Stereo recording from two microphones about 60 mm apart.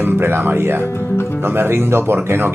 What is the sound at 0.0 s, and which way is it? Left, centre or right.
Speech, right.